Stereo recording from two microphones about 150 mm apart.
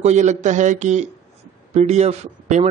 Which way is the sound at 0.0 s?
50° right (ahead or behind).